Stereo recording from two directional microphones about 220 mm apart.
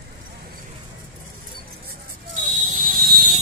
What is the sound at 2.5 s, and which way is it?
Buzzer, 35° right (ahead or behind).